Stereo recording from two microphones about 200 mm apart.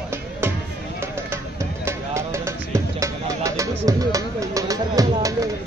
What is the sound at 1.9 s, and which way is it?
Music, 15° right (ahead or behind).